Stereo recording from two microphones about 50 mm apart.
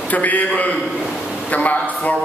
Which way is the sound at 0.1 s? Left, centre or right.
Left.